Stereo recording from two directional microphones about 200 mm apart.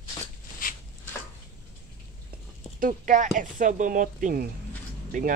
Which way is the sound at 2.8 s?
40° right (ahead or behind).